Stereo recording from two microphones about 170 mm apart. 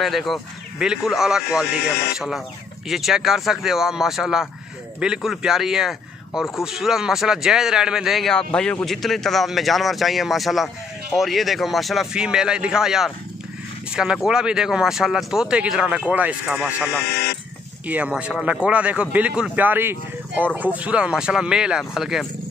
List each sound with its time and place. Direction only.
0.0 s speech: centre (ahead or behind)
17.0 s speech: 70° left (ahead or behind)
17.8 s speech: 10° right (ahead or behind)